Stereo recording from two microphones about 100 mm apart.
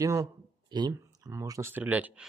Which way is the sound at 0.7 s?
45° right (ahead or behind).